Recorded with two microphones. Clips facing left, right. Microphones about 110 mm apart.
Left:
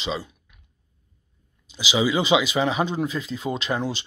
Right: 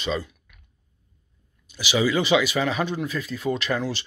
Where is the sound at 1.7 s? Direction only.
15° left (ahead or behind).